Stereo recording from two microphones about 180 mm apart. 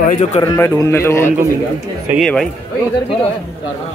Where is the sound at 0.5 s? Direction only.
15° left (ahead or behind).